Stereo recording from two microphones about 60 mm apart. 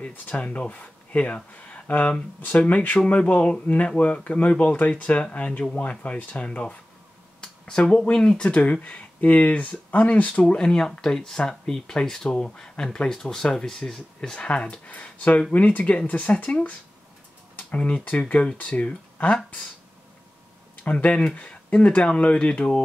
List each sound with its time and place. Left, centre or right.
0.0 s speech: left
7.4 s speech: centre
20.8 s speech: left